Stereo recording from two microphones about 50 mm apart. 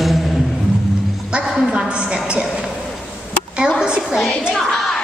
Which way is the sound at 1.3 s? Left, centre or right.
Centre.